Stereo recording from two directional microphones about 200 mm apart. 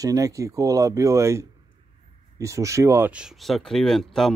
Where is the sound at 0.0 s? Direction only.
15° right (ahead or behind).